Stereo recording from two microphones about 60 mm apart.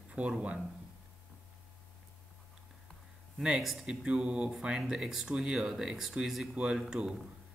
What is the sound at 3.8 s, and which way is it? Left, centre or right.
Speech, centre.